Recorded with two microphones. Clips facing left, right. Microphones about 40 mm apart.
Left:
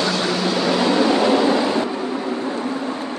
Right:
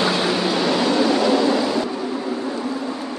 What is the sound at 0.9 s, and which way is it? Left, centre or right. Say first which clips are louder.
Waves: left 2 dB; left.